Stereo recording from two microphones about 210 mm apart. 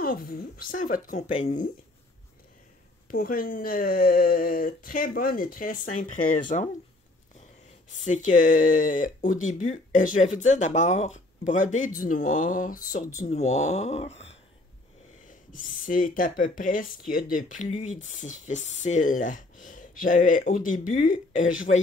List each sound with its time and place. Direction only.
0.0 s speech: 45° left (ahead or behind)
3.1 s speech: 45° left (ahead or behind)
7.9 s speech: 35° left (ahead or behind)